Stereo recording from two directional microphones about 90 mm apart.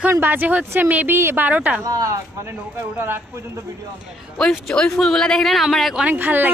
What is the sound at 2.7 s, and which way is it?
Speech, 25° right (ahead or behind).